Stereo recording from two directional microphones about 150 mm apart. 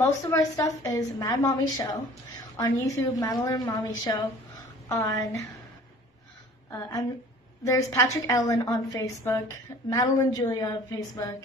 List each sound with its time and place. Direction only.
0.0 s a woman's voice: 20° left (ahead or behind)
7.6 s a woman's voice: 20° left (ahead or behind)